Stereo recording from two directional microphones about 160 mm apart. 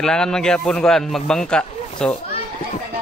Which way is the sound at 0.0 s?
5° left (ahead or behind).